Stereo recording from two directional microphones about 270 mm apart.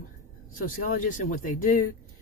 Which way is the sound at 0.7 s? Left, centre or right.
Left.